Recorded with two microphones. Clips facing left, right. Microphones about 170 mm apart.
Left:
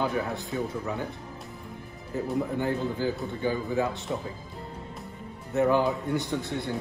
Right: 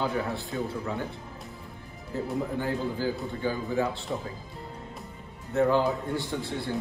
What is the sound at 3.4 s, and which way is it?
Speech, 20° left (ahead or behind).